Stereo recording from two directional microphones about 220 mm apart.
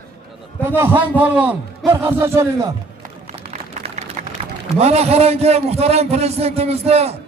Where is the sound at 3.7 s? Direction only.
30° right (ahead or behind).